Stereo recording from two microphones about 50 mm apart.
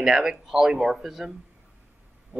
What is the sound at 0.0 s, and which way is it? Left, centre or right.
Speech, centre.